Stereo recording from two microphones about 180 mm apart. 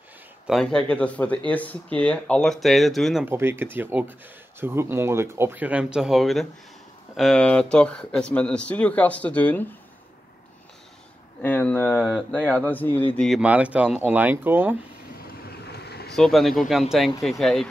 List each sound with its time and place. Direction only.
0.5 s speech: 5° left (ahead or behind)
3.3 s speech: 10° right (ahead or behind); by 9.7 s 10° left (ahead or behind)
11.4 s speech: 10° left (ahead or behind)
13.2 s speech: 5° right (ahead or behind)
15.4 s boat: 65° left (ahead or behind)
16.2 s speech: centre (ahead or behind)